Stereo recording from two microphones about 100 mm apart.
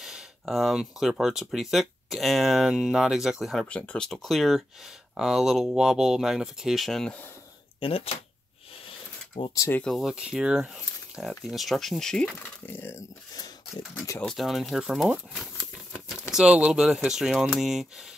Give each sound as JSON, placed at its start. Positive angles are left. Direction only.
{"t": 0.0, "sound": "speech", "side_deg": -5}
{"t": 3.6, "sound": "speech", "side_deg": 15}
{"t": 7.8, "sound": "speech", "side_deg": 70}
{"t": 9.8, "sound": "speech", "side_deg": 0}
{"t": 12.6, "sound": "speech", "side_deg": 20}
{"t": 14.2, "sound": "speech", "side_deg": 0}